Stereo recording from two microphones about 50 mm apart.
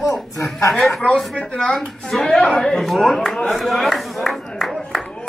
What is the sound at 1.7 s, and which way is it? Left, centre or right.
Speech, centre.